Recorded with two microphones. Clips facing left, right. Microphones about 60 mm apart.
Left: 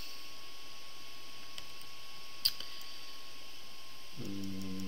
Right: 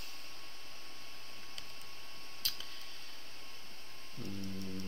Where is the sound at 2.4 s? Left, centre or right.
Centre.